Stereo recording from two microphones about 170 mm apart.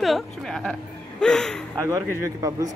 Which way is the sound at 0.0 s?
Centre (ahead or behind).